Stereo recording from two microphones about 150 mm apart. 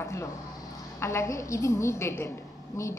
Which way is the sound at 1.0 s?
20° left (ahead or behind).